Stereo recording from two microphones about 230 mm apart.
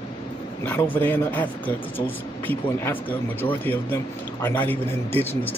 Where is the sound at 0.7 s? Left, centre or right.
Centre.